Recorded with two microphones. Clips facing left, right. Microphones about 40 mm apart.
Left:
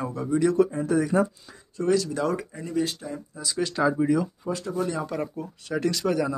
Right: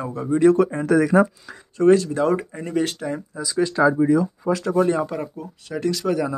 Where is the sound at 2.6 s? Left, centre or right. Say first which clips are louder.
Right 4 dB; right.